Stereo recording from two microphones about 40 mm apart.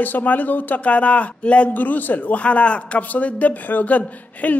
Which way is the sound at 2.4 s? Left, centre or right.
Left.